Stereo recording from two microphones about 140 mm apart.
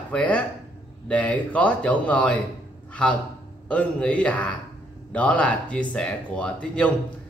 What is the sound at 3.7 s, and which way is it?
Speech, 10° left (ahead or behind).